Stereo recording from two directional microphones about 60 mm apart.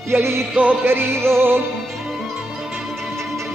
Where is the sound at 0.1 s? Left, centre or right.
Right.